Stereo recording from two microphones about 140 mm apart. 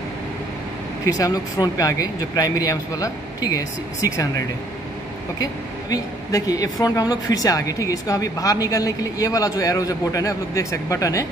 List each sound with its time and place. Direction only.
1.0 s a woman's voice: 25° left (ahead or behind)
5.4 s a woman's voice: 25° left (ahead or behind)